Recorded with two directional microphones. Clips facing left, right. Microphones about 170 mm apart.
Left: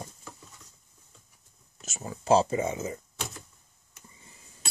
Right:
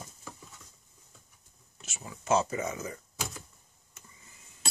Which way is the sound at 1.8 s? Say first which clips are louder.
Left 6 dB; 45° left (ahead or behind).